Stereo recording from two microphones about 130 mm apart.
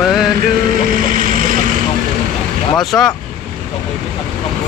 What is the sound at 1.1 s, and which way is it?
Vehicle, 90° right.